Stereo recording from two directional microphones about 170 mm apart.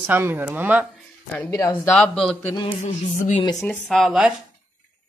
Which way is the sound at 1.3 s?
10° left (ahead or behind).